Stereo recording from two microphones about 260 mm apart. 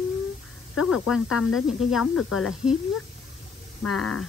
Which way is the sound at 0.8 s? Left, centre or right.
Centre.